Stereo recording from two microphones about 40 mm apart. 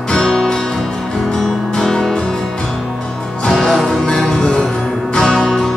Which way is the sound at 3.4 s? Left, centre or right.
Centre.